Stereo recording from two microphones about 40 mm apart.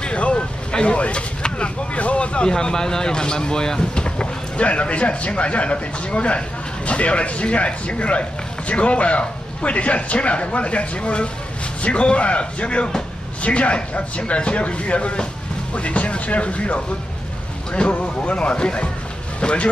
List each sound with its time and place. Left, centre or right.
0.0 s vehicle: left
1.4 s a sound: left
2.5 s speech: centre